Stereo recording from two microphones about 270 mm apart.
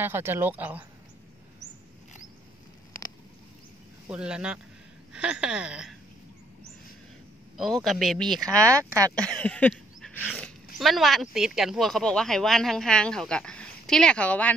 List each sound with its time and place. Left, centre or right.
0.0 s speech: centre
4.1 s speech: centre
7.5 s speech: centre